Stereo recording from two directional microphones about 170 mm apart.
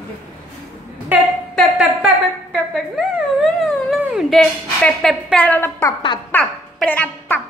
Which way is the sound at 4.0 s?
Centre (ahead or behind).